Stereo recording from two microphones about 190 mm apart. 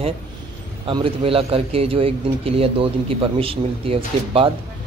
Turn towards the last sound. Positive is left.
turn(degrees=-30)  # may be behind; listen again after turning